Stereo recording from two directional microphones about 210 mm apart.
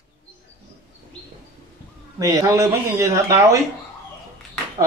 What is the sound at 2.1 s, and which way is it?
Speech, 15° right (ahead or behind).